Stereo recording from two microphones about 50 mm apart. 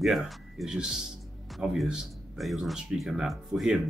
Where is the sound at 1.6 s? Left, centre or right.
Centre.